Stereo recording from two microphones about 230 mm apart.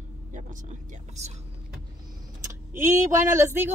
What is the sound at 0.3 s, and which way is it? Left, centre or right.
Speech, right.